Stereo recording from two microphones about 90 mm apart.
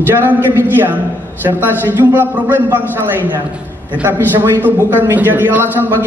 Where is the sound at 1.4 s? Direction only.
20° right (ahead or behind).